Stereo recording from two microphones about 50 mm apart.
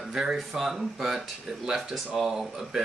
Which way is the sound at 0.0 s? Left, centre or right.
Centre.